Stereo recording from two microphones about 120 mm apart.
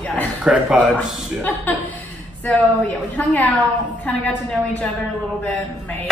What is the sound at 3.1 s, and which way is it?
Speech, 15° left (ahead or behind).